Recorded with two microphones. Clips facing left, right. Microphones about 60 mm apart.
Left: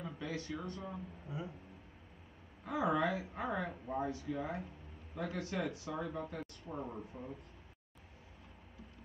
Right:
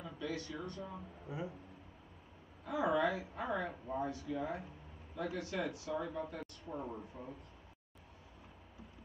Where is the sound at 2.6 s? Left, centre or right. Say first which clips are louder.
Even; left.